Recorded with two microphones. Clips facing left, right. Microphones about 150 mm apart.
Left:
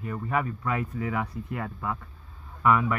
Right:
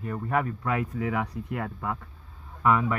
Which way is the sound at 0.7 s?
75° right (ahead or behind).